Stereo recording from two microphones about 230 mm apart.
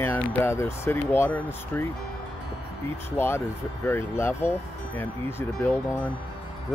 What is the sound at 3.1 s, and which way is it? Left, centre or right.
Speech, centre.